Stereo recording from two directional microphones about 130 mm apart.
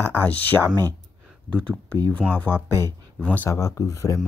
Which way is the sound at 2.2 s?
5° right (ahead or behind).